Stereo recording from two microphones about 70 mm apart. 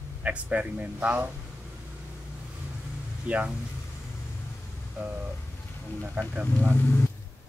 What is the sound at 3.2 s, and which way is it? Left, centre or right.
Speech, centre.